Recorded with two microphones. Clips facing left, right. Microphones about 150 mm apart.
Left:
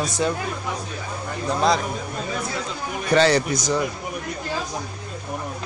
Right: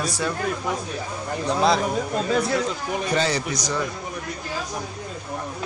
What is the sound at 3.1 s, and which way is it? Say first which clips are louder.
Speech: left 8 dB; 70° left (ahead or behind).